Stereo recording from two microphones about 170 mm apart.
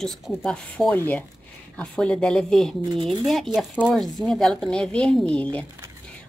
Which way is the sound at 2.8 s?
30° right (ahead or behind).